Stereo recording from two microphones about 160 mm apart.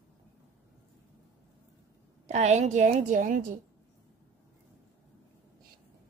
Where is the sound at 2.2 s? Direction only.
45° right (ahead or behind).